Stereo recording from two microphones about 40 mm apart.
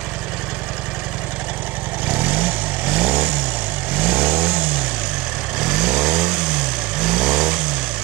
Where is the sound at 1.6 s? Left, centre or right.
Right.